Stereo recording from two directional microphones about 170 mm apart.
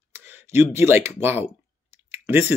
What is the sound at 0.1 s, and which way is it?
Speech, 15° right (ahead or behind).